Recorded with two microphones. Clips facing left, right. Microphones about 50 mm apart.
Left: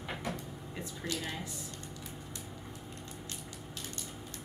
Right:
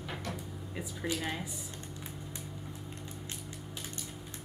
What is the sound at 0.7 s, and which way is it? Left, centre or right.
Speech, centre.